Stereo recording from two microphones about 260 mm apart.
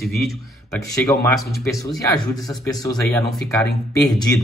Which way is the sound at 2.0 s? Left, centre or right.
Centre.